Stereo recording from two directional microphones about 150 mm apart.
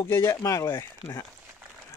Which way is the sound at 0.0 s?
15° left (ahead or behind).